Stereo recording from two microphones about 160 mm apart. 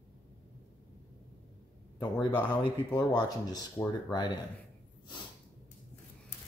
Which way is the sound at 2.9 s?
25° left (ahead or behind).